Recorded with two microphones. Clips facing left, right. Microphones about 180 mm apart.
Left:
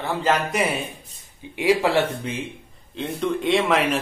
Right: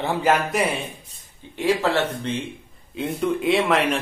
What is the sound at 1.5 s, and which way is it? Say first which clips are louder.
Speech: left 2 dB; 10° left (ahead or behind).